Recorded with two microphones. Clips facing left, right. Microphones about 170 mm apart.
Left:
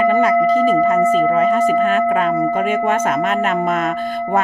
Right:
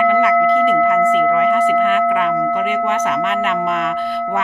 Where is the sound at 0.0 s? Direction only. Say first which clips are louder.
Even; 40° left (ahead or behind).